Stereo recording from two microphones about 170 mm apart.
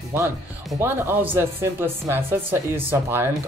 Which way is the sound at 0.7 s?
15° right (ahead or behind).